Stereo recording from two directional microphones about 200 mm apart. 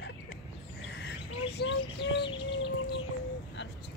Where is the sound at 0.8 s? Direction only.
60° left (ahead or behind).